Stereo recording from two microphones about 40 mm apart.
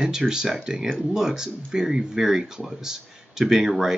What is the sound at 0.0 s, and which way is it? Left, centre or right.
Speech, centre.